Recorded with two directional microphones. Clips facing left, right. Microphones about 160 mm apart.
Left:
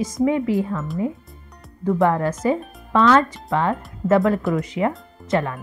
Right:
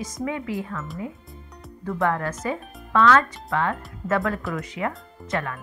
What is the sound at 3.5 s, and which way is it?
Speech, 30° left (ahead or behind).